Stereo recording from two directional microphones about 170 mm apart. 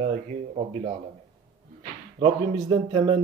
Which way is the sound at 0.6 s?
40° right (ahead or behind).